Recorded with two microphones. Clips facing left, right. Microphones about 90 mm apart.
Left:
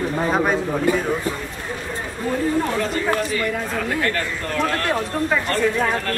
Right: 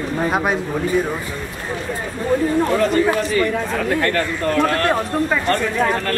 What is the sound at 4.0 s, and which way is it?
Speech, 50° right (ahead or behind).